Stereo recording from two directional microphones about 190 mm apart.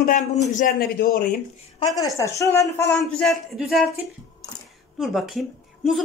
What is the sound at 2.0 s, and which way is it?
Speech, 15° left (ahead or behind).